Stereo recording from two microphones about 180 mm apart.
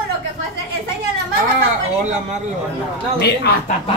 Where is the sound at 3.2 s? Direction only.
65° left (ahead or behind).